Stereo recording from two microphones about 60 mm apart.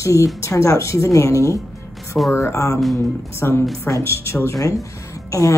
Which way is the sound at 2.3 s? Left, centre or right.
Left.